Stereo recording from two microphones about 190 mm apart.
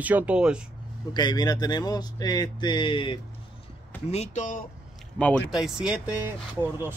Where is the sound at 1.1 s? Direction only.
20° left (ahead or behind).